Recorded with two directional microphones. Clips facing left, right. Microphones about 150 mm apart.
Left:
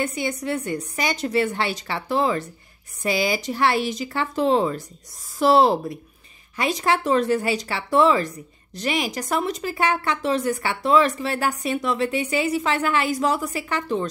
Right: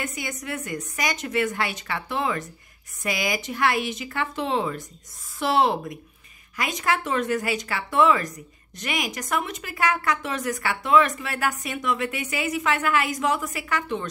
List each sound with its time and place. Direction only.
0.0 s speech: 30° left (ahead or behind)